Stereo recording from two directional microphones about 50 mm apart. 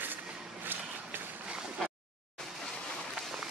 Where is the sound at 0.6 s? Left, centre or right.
Right.